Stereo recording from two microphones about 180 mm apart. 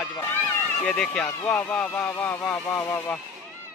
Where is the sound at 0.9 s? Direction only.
5° left (ahead or behind).